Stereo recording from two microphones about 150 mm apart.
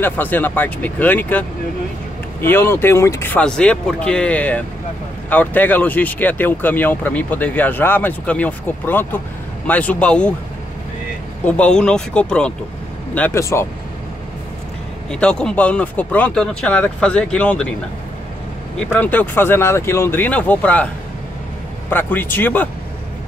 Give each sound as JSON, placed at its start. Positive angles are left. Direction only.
{"t": 0.0, "sound": "speech", "side_deg": 10}
{"t": 2.4, "sound": "speech", "side_deg": 15}
{"t": 11.4, "sound": "speech", "side_deg": 10}
{"t": 15.0, "sound": "speech", "side_deg": 5}
{"t": 18.8, "sound": "speech", "side_deg": 10}